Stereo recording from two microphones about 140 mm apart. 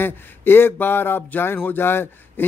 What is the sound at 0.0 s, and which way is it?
Speech, 15° left (ahead or behind).